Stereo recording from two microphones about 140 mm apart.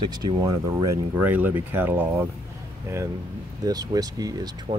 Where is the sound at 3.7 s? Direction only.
25° right (ahead or behind).